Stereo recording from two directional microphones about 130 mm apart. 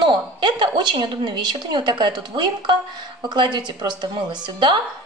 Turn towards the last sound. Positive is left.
turn(degrees=-35)  # may be behind; listen again after turning